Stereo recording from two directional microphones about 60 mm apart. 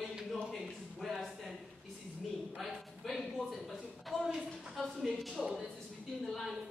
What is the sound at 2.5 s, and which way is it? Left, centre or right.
A man's voice, centre.